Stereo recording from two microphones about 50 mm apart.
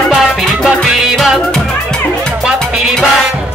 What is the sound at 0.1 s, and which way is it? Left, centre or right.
Music, centre.